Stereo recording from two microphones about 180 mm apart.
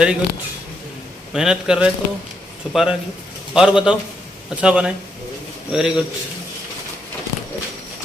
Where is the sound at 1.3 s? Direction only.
5° right (ahead or behind).